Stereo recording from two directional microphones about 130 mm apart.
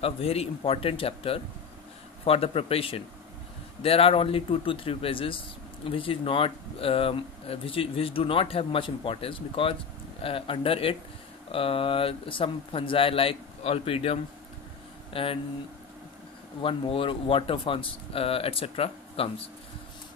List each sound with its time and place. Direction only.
0.0 s speech: 50° left (ahead or behind)
16.6 s speech: 45° left (ahead or behind)